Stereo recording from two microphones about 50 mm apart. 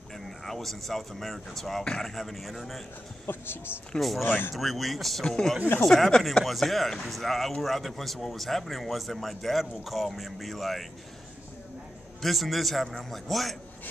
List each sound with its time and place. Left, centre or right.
0.5 s speech: centre
3.3 s speech: left
4.6 s speech: centre
12.2 s speech: centre
12.8 s a man's voice: centre
13.3 s speech: centre